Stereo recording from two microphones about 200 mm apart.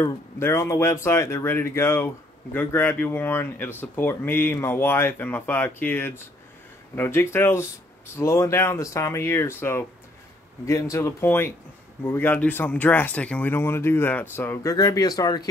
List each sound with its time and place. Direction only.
0.0 s speech: 15° left (ahead or behind)